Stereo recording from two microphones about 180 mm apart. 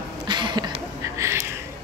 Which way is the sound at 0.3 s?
25° right (ahead or behind).